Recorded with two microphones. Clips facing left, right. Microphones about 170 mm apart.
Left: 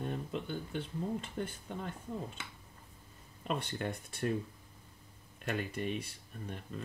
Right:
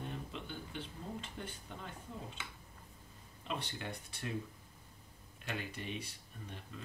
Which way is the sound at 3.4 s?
50° left (ahead or behind).